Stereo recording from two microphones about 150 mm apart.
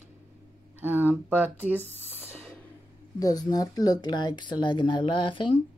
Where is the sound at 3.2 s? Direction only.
25° left (ahead or behind).